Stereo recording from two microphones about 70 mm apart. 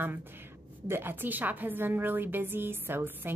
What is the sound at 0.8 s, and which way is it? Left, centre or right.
A woman's voice, right.